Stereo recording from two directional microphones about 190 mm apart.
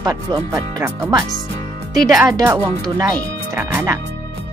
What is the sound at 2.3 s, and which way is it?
A woman's voice, 20° right (ahead or behind).